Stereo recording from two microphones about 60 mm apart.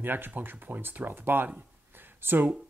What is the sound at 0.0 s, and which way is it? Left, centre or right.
Speech, right.